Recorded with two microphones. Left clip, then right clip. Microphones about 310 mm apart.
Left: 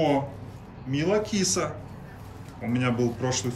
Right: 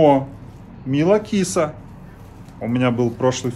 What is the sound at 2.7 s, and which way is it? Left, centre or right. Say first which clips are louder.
Speech: right 7 dB; centre.